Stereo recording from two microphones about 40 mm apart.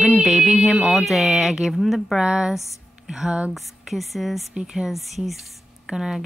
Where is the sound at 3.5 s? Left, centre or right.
Centre.